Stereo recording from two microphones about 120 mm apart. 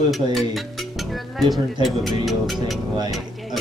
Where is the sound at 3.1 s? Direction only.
Centre (ahead or behind).